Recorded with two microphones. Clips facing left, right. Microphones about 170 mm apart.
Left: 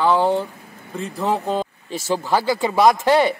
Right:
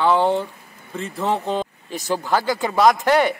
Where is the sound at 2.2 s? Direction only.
15° left (ahead or behind).